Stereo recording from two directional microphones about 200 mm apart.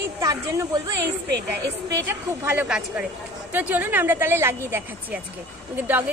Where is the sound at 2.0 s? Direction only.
10° right (ahead or behind).